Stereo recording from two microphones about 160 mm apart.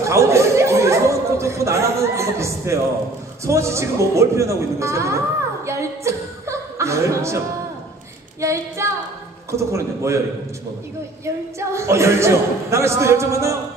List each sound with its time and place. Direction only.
0.0 s a sound: 20° right (ahead or behind)
3.4 s a man's voice: 20° right (ahead or behind)
11.7 s a man's voice: 15° right (ahead or behind)